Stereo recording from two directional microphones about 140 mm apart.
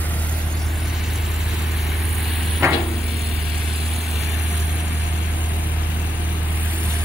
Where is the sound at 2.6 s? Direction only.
20° right (ahead or behind).